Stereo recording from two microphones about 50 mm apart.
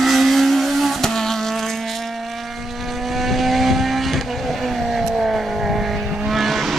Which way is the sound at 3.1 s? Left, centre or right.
Centre.